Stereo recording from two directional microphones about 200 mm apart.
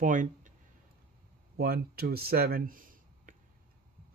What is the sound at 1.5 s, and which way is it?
Speech, 50° right (ahead or behind).